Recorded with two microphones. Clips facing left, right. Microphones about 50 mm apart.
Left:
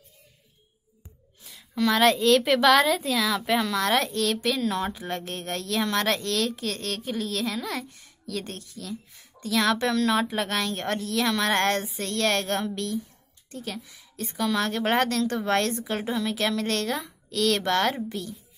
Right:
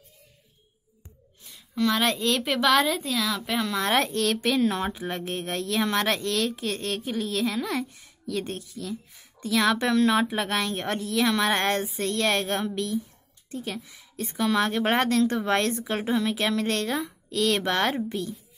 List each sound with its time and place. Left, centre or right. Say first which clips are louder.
1.4 s a woman's voice: even; centre
3.8 s a woman's voice: even; right